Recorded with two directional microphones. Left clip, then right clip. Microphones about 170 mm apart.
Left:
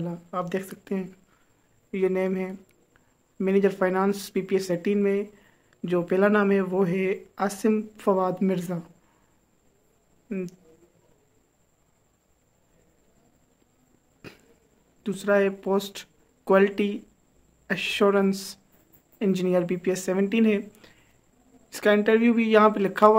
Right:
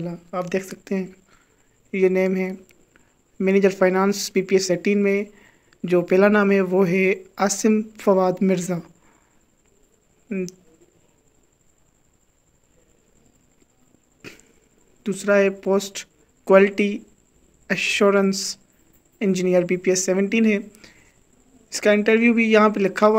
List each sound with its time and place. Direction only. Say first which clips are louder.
0.0 s speech: right 3 dB; 10° right (ahead or behind)
10.2 s speech: right 5 dB; 10° right (ahead or behind)
14.2 s dog: right 5 dB; 5° right (ahead or behind)
15.0 s speech: right 4 dB; 10° right (ahead or behind)